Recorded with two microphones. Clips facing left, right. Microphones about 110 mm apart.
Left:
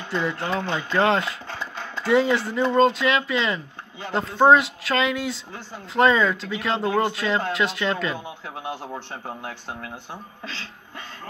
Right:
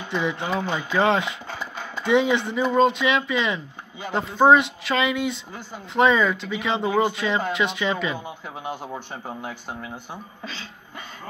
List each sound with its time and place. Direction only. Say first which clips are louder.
0.0 s speech: even; centre (ahead or behind)